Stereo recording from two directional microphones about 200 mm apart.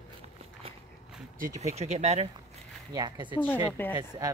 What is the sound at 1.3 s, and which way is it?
Speech, 40° right (ahead or behind).